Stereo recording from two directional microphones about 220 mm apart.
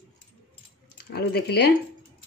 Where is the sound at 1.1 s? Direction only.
45° left (ahead or behind).